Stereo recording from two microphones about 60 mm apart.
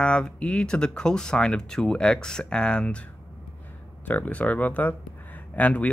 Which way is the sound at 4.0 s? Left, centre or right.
Left.